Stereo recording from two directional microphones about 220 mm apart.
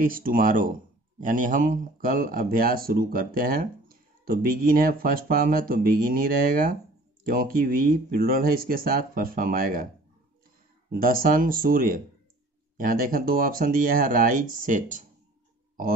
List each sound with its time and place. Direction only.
0.0 s speech: 40° right (ahead or behind)
10.9 s speech: 40° right (ahead or behind)